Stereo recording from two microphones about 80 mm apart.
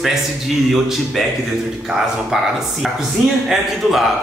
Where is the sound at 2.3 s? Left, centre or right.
Centre.